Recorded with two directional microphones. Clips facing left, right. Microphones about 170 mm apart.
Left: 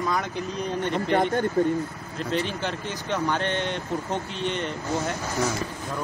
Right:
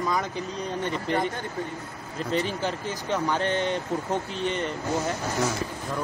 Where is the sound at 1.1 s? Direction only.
55° left (ahead or behind).